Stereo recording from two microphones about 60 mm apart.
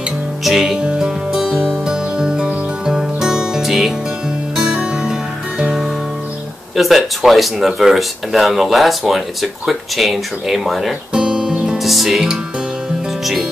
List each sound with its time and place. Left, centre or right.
0.4 s music: centre
0.7 s music: centre
5.6 s music: centre
6.8 s speech: centre
11.1 s music: centre
11.8 s speech: centre